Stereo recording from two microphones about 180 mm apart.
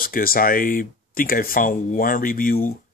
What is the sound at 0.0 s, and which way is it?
Speech, 55° left (ahead or behind).